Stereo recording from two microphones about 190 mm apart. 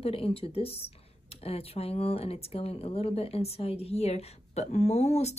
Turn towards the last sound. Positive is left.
turn(degrees=35)  # may be behind; listen again after turning